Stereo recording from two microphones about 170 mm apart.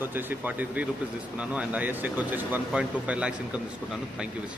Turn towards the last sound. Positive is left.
turn(degrees=-5)  # may be behind; listen again after turning